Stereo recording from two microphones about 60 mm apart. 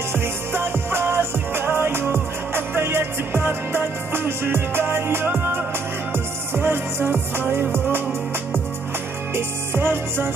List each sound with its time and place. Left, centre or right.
0.1 s music: right
9.3 s music: right